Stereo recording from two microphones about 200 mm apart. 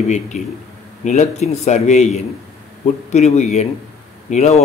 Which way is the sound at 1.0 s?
35° left (ahead or behind).